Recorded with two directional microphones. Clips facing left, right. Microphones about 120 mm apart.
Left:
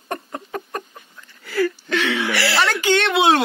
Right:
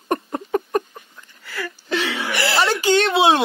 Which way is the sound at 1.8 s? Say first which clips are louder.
Left 2 dB; 30° right (ahead or behind).